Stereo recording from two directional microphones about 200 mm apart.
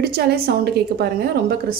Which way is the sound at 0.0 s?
50° right (ahead or behind).